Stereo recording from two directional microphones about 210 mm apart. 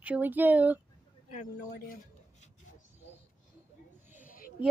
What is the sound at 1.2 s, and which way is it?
Speech, 30° left (ahead or behind).